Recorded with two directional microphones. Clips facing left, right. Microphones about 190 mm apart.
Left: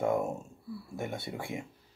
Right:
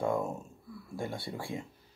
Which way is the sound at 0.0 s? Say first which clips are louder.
Left 2 dB; 20° left (ahead or behind).